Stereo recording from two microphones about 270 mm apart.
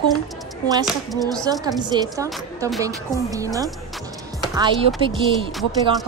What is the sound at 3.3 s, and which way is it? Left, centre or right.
Speech, centre.